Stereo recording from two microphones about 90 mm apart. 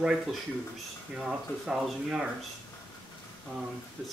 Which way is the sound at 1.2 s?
5° right (ahead or behind).